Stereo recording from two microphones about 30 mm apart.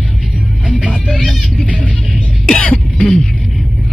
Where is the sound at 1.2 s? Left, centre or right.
Centre.